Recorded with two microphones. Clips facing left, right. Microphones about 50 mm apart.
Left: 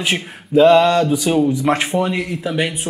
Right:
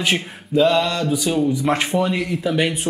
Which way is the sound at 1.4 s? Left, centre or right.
Centre.